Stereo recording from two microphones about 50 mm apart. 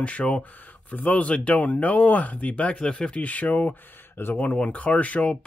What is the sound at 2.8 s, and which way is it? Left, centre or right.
Speech, centre.